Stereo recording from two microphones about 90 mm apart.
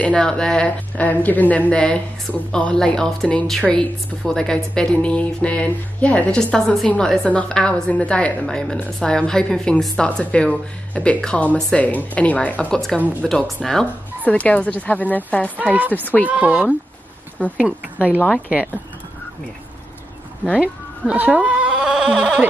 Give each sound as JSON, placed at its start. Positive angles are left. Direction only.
{"t": 0.0, "sound": "a woman's voice", "side_deg": 10}
{"t": 14.2, "sound": "a woman's voice", "side_deg": 15}
{"t": 15.6, "sound": "speech", "side_deg": -15}
{"t": 15.9, "sound": "speech", "side_deg": 20}
{"t": 16.3, "sound": "speech", "side_deg": -15}
{"t": 21.1, "sound": "speech", "side_deg": -15}